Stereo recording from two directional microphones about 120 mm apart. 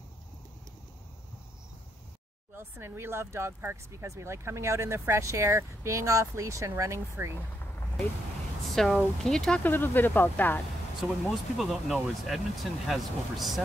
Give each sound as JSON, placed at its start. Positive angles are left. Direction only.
{"t": 2.5, "sound": "speech", "side_deg": -20}
{"t": 8.6, "sound": "speech", "side_deg": 0}
{"t": 9.6, "sound": "speech", "side_deg": 20}
{"t": 11.2, "sound": "speech", "side_deg": 0}